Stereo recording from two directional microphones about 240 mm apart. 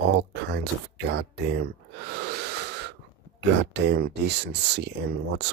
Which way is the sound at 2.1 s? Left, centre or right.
Right.